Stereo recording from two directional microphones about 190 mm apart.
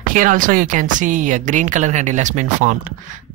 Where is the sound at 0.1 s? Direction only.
45° right (ahead or behind).